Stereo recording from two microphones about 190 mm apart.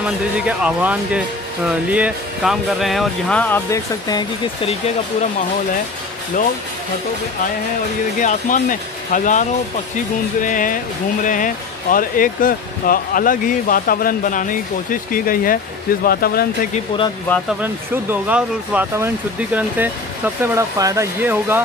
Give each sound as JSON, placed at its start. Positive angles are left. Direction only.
{"t": 0.0, "sound": "speech", "side_deg": -5}
{"t": 8.2, "sound": "speech", "side_deg": 40}
{"t": 16.7, "sound": "speech", "side_deg": 25}
{"t": 18.1, "sound": "speech", "side_deg": -5}